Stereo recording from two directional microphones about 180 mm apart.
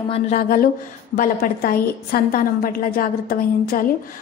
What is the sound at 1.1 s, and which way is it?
A woman's voice, 50° left (ahead or behind).